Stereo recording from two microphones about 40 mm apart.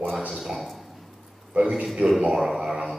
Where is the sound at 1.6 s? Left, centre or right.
Right.